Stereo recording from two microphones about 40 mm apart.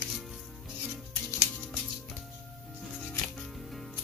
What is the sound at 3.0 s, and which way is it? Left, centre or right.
Music, centre.